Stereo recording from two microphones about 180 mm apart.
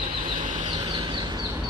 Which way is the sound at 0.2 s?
30° right (ahead or behind).